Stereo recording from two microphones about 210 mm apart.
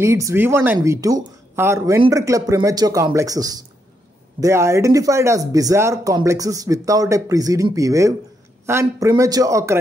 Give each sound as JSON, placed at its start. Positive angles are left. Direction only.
{"t": 0.0, "sound": "speech", "side_deg": -15}